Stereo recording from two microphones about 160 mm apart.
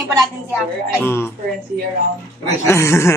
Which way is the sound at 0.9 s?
15° left (ahead or behind).